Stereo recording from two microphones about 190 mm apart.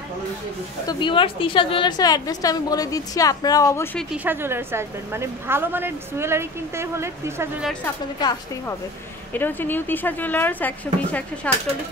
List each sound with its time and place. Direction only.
0.8 s a woman's voice: 25° left (ahead or behind)
4.1 s a woman's voice: 10° right (ahead or behind)
8.2 s a woman's voice: 20° left (ahead or behind)
9.3 s a woman's voice: 10° left (ahead or behind)